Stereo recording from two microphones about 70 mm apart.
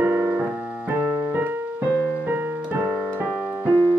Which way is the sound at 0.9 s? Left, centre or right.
Right.